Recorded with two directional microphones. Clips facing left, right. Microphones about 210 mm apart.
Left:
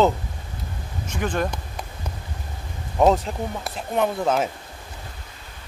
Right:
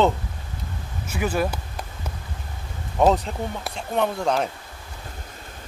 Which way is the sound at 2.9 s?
Centre (ahead or behind).